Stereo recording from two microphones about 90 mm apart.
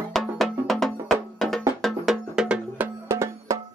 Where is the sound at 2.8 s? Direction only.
30° right (ahead or behind).